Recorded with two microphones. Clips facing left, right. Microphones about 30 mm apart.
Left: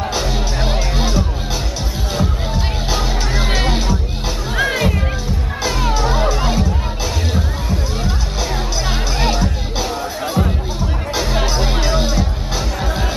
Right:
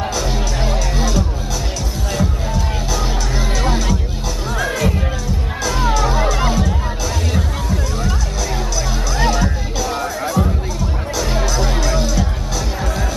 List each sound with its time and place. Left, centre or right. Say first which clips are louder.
0.7 s music: left 1 dB; left
5.9 s music: even; left
9.2 s music: right 3 dB; left